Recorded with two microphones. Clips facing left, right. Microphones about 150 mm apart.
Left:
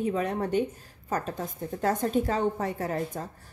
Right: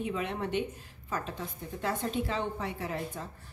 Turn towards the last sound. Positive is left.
turn(degrees=45)  # may be behind; listen again after turning